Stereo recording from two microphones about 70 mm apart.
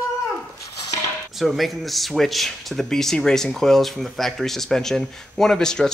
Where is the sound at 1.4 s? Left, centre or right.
Centre.